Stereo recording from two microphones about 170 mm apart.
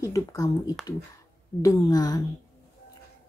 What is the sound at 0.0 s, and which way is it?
Speech, 20° left (ahead or behind).